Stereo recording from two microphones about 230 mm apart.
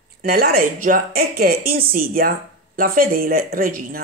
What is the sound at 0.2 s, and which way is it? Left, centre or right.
A woman's voice, right.